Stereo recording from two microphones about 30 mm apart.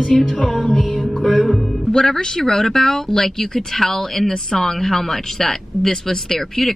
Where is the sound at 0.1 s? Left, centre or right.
Centre.